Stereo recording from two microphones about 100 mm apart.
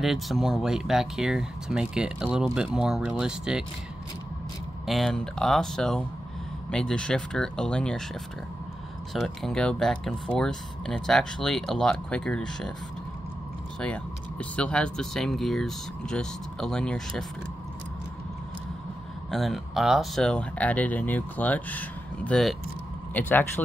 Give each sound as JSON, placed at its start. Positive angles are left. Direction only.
{"t": 0.0, "sound": "speech", "side_deg": 0}
{"t": 4.8, "sound": "speech", "side_deg": 0}
{"t": 9.1, "sound": "speech", "side_deg": 0}
{"t": 13.7, "sound": "speech", "side_deg": 10}
{"t": 19.3, "sound": "speech", "side_deg": 0}